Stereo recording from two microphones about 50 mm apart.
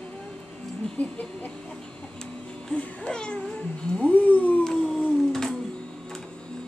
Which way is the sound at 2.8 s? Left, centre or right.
Centre.